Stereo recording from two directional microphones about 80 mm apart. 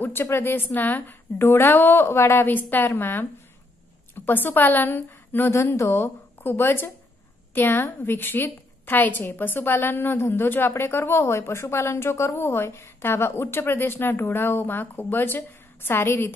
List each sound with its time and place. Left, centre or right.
0.0 s a woman's voice: left